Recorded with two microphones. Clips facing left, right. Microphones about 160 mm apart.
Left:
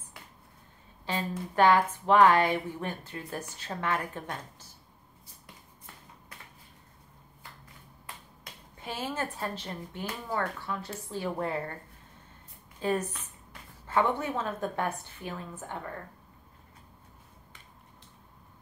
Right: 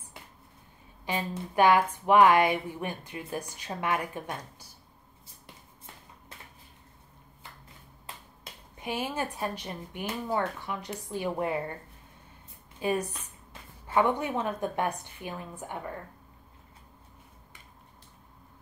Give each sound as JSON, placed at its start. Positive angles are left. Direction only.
{"t": 1.0, "sound": "a woman's voice", "side_deg": -15}
{"t": 8.7, "sound": "a woman's voice", "side_deg": -15}
{"t": 12.8, "sound": "a woman's voice", "side_deg": -10}